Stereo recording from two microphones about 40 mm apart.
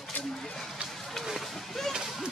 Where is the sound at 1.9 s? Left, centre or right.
Centre.